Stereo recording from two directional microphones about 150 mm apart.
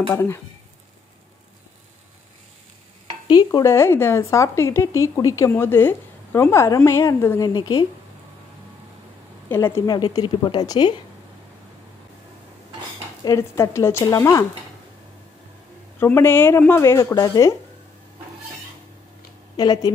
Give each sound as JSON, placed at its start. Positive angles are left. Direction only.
{"t": 0.1, "sound": "speech", "side_deg": 15}
{"t": 3.3, "sound": "a woman's voice", "side_deg": 25}
{"t": 9.5, "sound": "speech", "side_deg": 15}
{"t": 9.8, "sound": "a woman's voice", "side_deg": 30}
{"t": 13.2, "sound": "a woman's voice", "side_deg": 20}
{"t": 16.0, "sound": "speech", "side_deg": 15}
{"t": 19.5, "sound": "speech", "side_deg": 25}